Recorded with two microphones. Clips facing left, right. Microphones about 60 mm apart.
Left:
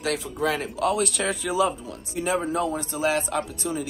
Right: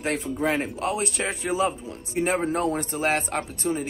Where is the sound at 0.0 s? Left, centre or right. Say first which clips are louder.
Even; right.